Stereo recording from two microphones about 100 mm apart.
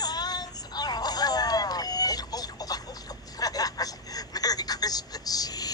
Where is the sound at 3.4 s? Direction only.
40° left (ahead or behind).